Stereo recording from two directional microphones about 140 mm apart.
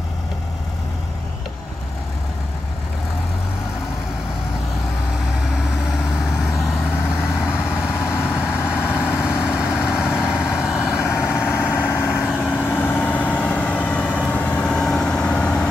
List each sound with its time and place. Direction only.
7.1 s vehicle: 5° right (ahead or behind)
12.6 s vehicle: 10° left (ahead or behind)